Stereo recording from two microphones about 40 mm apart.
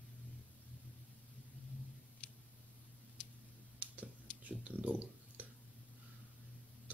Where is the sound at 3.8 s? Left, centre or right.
Right.